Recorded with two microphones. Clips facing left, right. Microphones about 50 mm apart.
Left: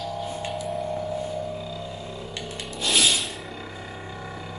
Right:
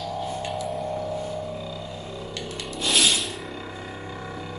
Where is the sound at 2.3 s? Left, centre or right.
Centre.